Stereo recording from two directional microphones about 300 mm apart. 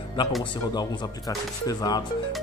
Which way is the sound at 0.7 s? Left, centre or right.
Centre.